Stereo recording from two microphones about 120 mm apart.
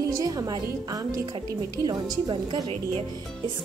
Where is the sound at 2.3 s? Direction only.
45° right (ahead or behind).